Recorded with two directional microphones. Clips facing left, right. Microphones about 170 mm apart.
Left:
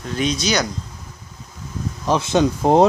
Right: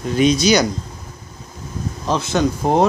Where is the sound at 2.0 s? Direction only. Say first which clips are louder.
Left 1 dB; 20° left (ahead or behind).